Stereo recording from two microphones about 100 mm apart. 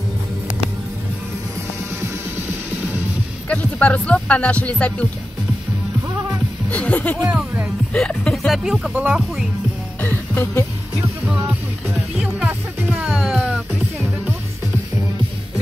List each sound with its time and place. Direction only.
3.4 s speech: 15° left (ahead or behind)
6.7 s speech: 15° left (ahead or behind)
7.2 s music: 15° right (ahead or behind)
7.9 s music: 10° left (ahead or behind)
8.5 s speech: centre (ahead or behind)
8.9 s music: 10° right (ahead or behind)
10.0 s music: 20° left (ahead or behind)
11.2 s music: 15° right (ahead or behind)